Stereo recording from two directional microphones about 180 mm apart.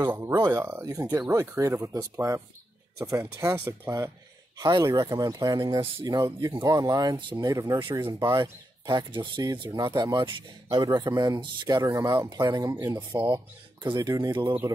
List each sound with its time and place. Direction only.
0.0 s speech: 15° right (ahead or behind)